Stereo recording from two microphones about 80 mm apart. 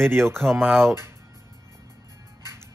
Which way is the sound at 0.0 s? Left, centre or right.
Right.